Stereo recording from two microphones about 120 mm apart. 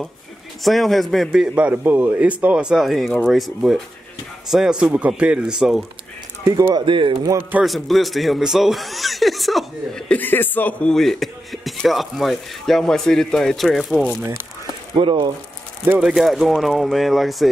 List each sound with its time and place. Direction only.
0.7 s speech: centre (ahead or behind)
6.7 s speech: 45° right (ahead or behind)
7.6 s speech: centre (ahead or behind)
15.0 s speech: 45° right (ahead or behind)
16.0 s speech: 5° right (ahead or behind)